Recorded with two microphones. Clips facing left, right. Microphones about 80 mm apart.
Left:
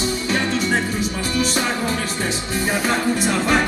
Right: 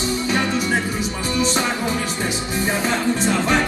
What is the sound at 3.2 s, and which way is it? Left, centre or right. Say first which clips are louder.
Music: even; centre.